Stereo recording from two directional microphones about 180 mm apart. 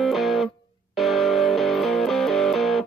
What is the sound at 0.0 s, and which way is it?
Music, centre (ahead or behind).